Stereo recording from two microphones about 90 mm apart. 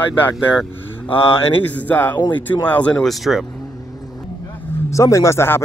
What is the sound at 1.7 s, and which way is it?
Speech, 20° left (ahead or behind).